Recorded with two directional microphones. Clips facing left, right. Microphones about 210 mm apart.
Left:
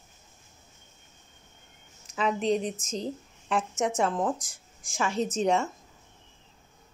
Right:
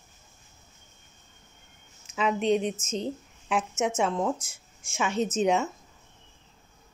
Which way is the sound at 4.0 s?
Centre (ahead or behind).